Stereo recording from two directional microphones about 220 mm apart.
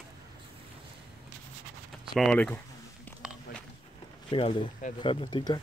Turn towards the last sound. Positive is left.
turn(degrees=20)  # may be behind; listen again after turning